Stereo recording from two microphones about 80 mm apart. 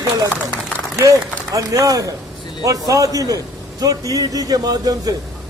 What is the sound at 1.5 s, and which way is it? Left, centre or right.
A man's voice, right.